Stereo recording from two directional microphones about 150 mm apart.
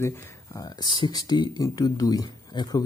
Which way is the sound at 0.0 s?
20° left (ahead or behind).